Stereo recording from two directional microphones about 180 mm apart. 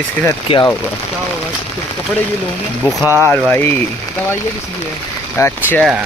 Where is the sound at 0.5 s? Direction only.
30° left (ahead or behind).